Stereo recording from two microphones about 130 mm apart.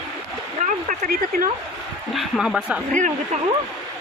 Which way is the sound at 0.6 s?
90° right.